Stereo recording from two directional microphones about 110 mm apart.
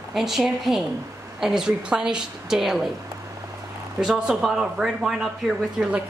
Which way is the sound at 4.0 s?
5° right (ahead or behind).